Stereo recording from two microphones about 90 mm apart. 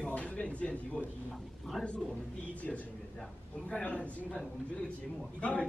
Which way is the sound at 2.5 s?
15° left (ahead or behind).